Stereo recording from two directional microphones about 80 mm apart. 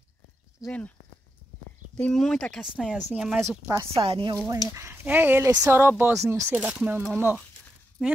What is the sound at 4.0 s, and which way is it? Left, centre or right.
Speech, right.